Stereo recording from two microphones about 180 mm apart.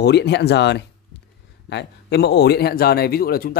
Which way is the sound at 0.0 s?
70° left (ahead or behind).